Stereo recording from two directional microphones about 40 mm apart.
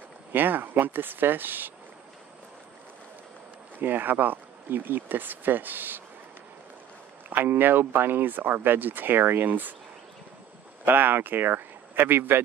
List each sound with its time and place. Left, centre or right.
0.3 s speech: right
3.8 s speech: right
7.2 s speech: right
9.5 s speech: right
10.9 s speech: right